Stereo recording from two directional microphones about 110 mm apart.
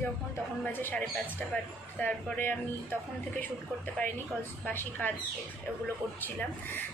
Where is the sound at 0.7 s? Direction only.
15° left (ahead or behind).